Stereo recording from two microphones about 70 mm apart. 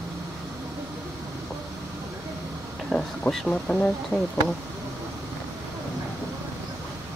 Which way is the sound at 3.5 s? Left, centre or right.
Centre.